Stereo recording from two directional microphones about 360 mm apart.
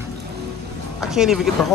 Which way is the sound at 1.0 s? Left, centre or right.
Centre.